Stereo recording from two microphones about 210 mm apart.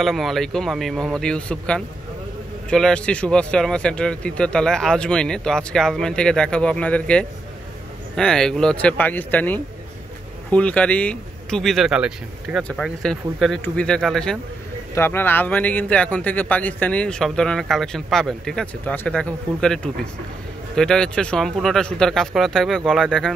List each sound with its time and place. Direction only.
0.0 s speech: centre (ahead or behind)